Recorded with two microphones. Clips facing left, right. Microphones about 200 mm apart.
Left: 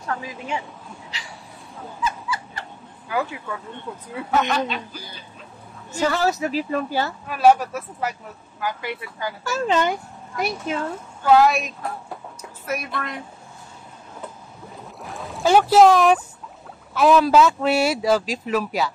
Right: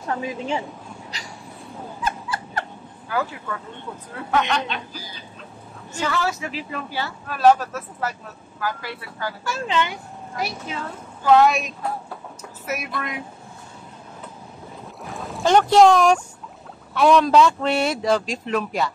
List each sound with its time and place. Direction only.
0.0 s a woman's voice: 25° right (ahead or behind)
1.1 s a sound: 40° right (ahead or behind)
2.0 s fowl: 55° right (ahead or behind)
4.1 s speech: 5° left (ahead or behind)
5.9 s a woman's voice: 40° left (ahead or behind)
7.2 s speech: 10° left (ahead or behind)
9.4 s a child's voice: 40° left (ahead or behind)
11.2 s speech: centre (ahead or behind)
15.0 s speech: centre (ahead or behind)